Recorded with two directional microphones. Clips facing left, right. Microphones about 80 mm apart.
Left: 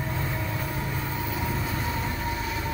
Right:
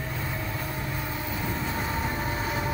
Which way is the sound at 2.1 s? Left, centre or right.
Right.